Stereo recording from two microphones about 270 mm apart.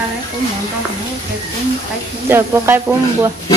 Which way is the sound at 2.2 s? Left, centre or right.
Centre.